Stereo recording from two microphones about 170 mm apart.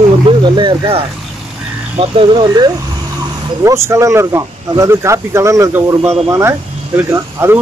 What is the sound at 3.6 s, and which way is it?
Speech, 15° right (ahead or behind).